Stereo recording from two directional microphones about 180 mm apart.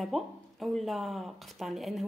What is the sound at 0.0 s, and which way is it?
A woman's voice, centre (ahead or behind).